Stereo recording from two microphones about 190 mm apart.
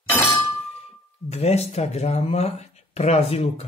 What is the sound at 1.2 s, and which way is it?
Speech, 35° left (ahead or behind).